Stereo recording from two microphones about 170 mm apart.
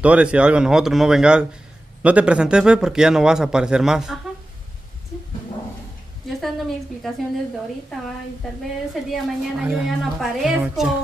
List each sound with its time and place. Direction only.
0.0 s speech: 5° right (ahead or behind)
6.4 s speech: centre (ahead or behind)
9.1 s speech: 5° right (ahead or behind)